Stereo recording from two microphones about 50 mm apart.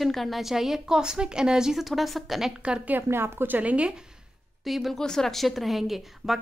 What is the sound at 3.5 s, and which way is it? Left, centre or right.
Speech, right.